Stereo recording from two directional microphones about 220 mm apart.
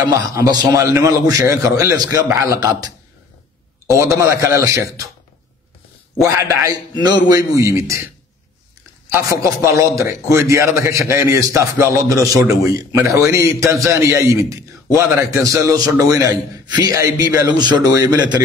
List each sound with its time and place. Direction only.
0.1 s a man's voice: 15° right (ahead or behind)
6.2 s a man's voice: 15° right (ahead or behind)
9.1 s a man's voice: 15° right (ahead or behind)